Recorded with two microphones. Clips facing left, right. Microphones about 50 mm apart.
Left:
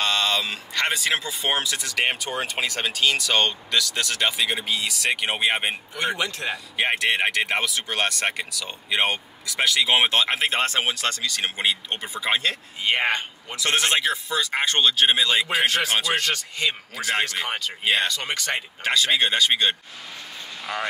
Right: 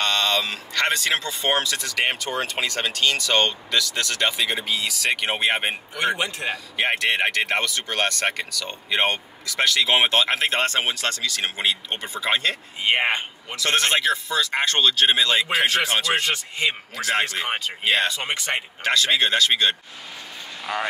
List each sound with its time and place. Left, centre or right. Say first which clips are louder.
0.0 s speech: right 1 dB; centre
6.1 s speech: right 1 dB; right
6.5 s speech: right 1 dB; centre
12.8 s speech: right 1 dB; right
13.6 s speech: right 1 dB; centre
16.2 s speech: right 1 dB; right
16.9 s speech: right 2 dB; centre
17.5 s speech: right 1 dB; right
18.9 s speech: right 1 dB; centre